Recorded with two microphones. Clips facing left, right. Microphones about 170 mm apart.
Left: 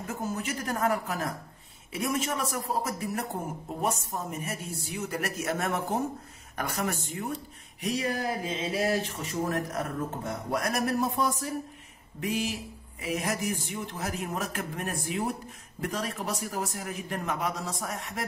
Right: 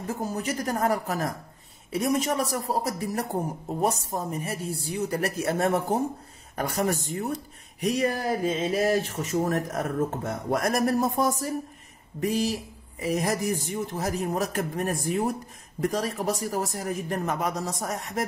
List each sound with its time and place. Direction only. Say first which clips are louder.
0.0 s a man's voice: right 3 dB; 35° right (ahead or behind)